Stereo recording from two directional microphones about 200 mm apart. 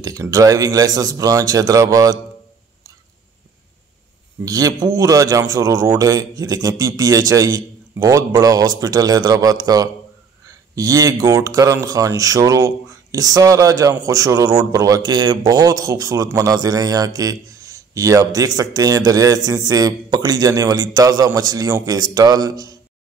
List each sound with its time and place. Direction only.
0.0 s a man's voice: 15° right (ahead or behind)
4.5 s a man's voice: 15° right (ahead or behind)